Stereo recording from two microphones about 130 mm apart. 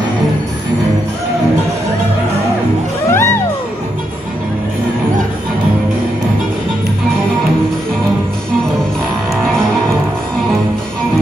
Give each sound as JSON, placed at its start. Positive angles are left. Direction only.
{"t": 3.1, "sound": "music", "side_deg": 20}